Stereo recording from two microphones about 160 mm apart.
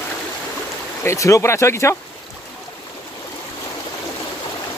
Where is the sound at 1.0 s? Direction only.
20° left (ahead or behind).